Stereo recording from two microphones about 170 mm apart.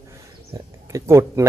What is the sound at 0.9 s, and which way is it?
Speech, 20° right (ahead or behind).